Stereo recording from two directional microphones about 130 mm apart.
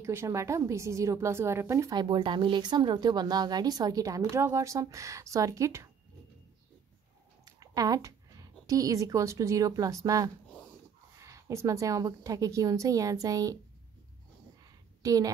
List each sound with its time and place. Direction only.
0.0 s a woman's voice: 20° right (ahead or behind)
7.4 s a woman's voice: 30° right (ahead or behind)
14.6 s a sound: 25° right (ahead or behind)